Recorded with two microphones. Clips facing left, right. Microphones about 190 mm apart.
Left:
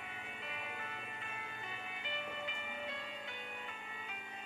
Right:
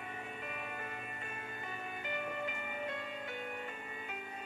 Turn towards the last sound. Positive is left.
turn(degrees=-50)  # may be behind; listen again after turning